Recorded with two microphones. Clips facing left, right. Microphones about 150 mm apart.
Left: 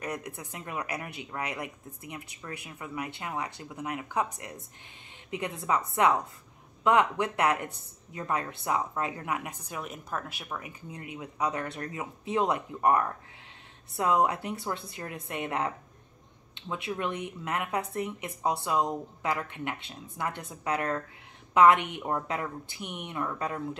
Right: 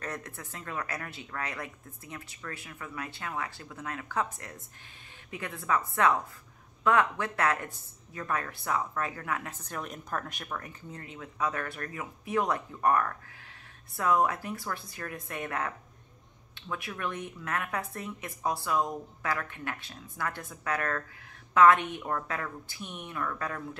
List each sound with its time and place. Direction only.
0.0 s a woman's voice: 15° left (ahead or behind)